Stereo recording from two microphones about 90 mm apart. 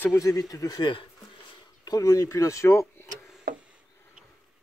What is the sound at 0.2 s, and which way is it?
Speech, 40° left (ahead or behind).